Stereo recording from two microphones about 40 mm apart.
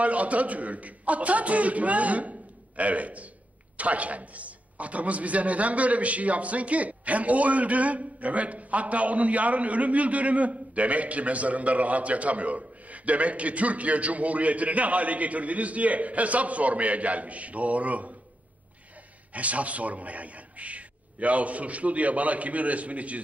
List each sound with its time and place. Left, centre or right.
0.0 s a man's voice: right
19.3 s a man's voice: right